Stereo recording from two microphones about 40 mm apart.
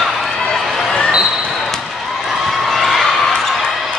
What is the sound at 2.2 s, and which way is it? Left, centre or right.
Basketball bounce, centre.